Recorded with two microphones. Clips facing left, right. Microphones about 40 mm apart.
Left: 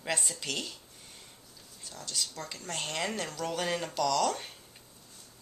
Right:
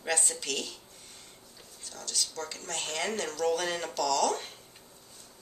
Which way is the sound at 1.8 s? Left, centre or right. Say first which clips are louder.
Right 1 dB; centre.